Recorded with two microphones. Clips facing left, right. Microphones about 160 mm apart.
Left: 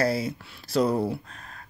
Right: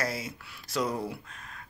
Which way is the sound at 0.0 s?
30° left (ahead or behind).